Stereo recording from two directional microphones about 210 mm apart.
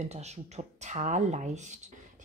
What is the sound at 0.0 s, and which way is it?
A woman's voice, 30° right (ahead or behind).